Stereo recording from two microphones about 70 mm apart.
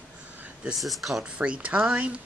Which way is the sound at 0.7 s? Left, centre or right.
Centre.